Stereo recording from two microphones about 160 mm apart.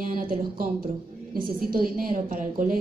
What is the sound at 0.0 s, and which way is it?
A woman's voice, 60° right (ahead or behind).